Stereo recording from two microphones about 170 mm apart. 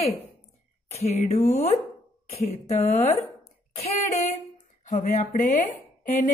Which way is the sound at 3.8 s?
40° left (ahead or behind).